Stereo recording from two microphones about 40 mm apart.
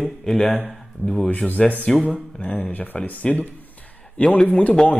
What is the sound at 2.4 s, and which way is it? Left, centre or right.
Speech, left.